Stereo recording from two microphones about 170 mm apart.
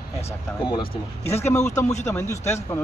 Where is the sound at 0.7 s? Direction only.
30° left (ahead or behind).